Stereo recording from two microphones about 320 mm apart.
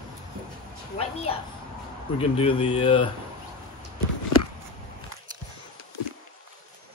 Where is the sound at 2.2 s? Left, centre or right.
Centre.